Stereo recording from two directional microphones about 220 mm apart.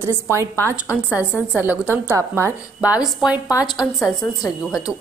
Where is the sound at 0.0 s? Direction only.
10° right (ahead or behind).